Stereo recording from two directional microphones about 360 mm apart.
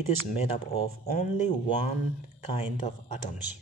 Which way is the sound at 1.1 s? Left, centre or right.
Centre.